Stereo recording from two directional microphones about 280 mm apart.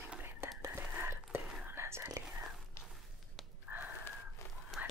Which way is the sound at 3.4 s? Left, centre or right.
Centre.